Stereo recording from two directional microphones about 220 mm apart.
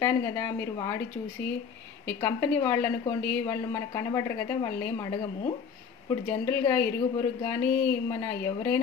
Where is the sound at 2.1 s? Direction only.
10° left (ahead or behind).